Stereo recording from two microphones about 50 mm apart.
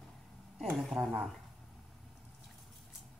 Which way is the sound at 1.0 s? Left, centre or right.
Right.